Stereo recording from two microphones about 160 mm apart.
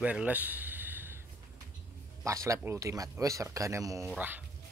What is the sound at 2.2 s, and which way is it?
Speech, 20° right (ahead or behind).